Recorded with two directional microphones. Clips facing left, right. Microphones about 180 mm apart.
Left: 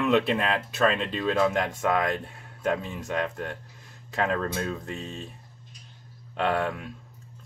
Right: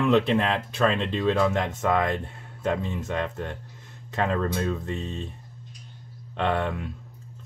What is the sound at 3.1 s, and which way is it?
Speech, 10° left (ahead or behind).